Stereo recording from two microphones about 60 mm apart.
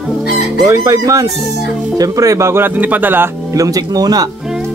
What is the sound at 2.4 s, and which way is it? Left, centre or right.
Speech, right.